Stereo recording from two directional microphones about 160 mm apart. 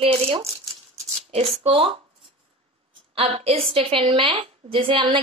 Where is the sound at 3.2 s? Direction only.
35° right (ahead or behind).